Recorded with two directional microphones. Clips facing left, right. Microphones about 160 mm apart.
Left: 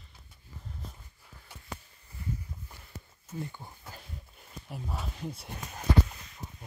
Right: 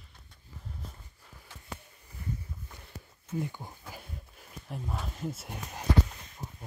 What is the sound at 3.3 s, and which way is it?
Speech, 15° right (ahead or behind).